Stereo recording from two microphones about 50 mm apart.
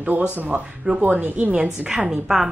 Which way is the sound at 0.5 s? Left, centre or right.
Right.